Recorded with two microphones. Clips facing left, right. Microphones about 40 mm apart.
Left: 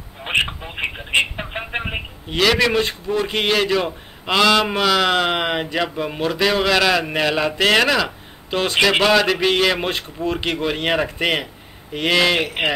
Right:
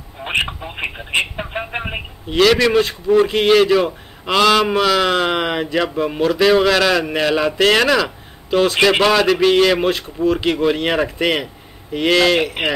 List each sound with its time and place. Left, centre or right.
0.2 s telephone: centre
0.7 s speech: centre
3.1 s speech: centre
3.4 s speech: centre
10.2 s speech: right
10.6 s speech: centre